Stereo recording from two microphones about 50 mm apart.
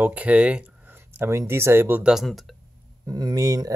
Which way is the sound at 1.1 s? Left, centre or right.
Right.